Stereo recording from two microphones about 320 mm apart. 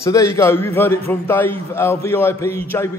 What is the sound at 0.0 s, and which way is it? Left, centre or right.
A man's voice, centre.